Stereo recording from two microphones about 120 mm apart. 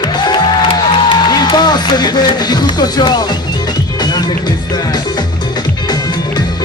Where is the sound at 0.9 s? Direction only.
40° left (ahead or behind).